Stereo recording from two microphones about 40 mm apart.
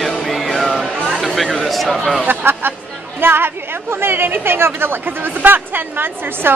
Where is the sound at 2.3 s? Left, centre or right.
Right.